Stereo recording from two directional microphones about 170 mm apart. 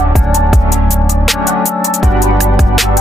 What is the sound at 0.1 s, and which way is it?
Music, centre (ahead or behind).